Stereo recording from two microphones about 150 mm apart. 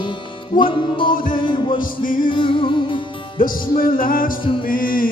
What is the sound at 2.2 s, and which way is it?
Music, 35° left (ahead or behind).